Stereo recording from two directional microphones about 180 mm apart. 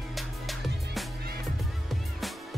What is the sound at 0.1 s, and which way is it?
Music, centre (ahead or behind).